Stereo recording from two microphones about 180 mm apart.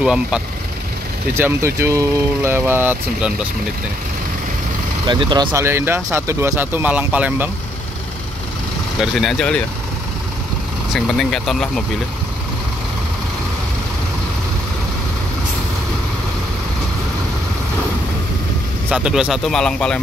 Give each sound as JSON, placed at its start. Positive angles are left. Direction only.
{"t": 0.0, "sound": "speech", "side_deg": -5}
{"t": 1.3, "sound": "speech", "side_deg": -15}
{"t": 5.0, "sound": "speech", "side_deg": -25}
{"t": 5.5, "sound": "speech", "side_deg": -15}
{"t": 9.0, "sound": "speech", "side_deg": 0}
{"t": 11.1, "sound": "speech", "side_deg": 0}
{"t": 18.9, "sound": "speech", "side_deg": -5}